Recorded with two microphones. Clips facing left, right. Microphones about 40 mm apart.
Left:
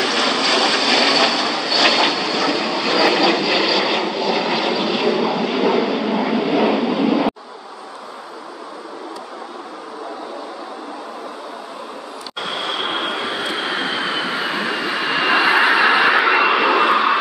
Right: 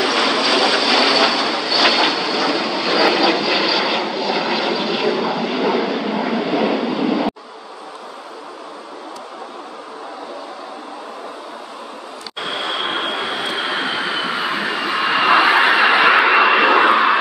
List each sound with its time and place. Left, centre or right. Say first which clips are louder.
0.0 s vehicle: right 1 dB; centre
12.4 s vehicle: right 1 dB; centre
16.4 s vehicle: right 2 dB; right